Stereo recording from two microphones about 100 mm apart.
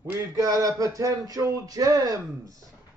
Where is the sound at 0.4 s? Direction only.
35° right (ahead or behind).